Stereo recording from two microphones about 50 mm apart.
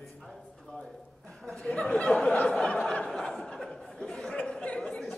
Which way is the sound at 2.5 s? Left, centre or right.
Centre.